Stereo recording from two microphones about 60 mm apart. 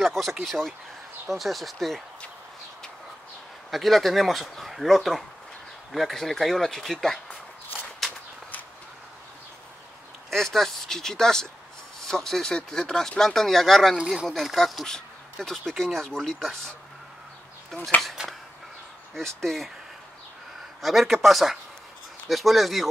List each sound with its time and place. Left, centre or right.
0.0 s speech: centre
3.7 s speech: centre
10.3 s speech: centre
13.9 s speech: centre
14.2 s speech: centre
18.2 s a sound: centre
19.1 s speech: centre
20.8 s speech: centre